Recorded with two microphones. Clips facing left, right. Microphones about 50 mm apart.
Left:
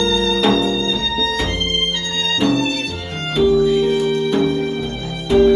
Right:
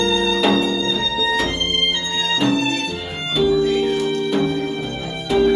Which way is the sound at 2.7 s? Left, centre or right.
Right.